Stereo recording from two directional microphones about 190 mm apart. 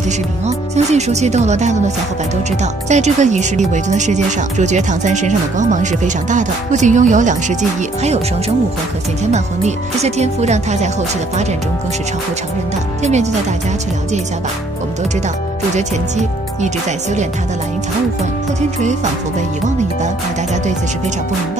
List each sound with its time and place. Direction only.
0.5 s speech: 35° right (ahead or behind)
9.3 s speech: 35° right (ahead or behind)
13.0 s speech: 35° right (ahead or behind)
15.7 s speech: 40° right (ahead or behind)